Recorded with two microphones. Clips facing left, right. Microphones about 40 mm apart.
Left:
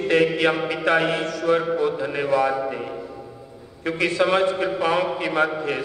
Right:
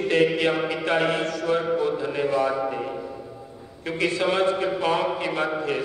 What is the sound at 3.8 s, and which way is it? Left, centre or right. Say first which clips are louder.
A man's voice: left 3 dB; left.